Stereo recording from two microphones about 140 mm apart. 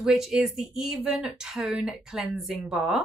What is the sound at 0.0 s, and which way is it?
Speech, 5° right (ahead or behind).